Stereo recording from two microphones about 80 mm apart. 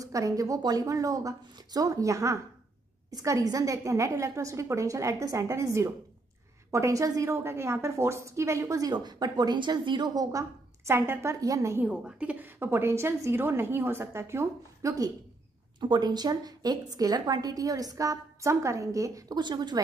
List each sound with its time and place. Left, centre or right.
0.0 s a woman's voice: right
10.1 s a woman's voice: right
10.9 s a woman's voice: right
11.4 s a woman's voice: right
11.8 s a woman's voice: centre; by 15.1 s right
15.8 s a woman's voice: right
19.3 s a woman's voice: right